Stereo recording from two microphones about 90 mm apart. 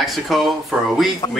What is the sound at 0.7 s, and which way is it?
Speech, 15° right (ahead or behind).